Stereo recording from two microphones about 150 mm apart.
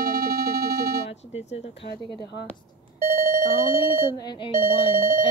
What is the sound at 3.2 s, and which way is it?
Alarm, 75° right (ahead or behind).